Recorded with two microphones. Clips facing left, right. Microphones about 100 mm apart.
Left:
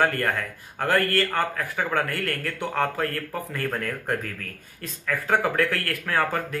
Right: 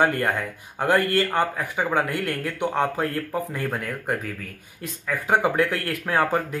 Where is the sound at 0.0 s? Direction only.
15° right (ahead or behind).